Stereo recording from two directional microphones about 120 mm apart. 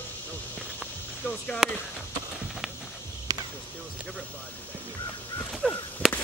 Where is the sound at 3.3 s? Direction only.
30° right (ahead or behind).